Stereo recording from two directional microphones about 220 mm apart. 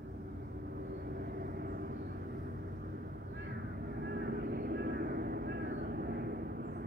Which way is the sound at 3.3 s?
50° right (ahead or behind).